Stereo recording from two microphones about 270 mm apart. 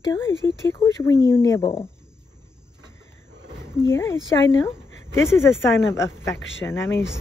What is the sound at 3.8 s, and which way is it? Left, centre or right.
Speech, centre.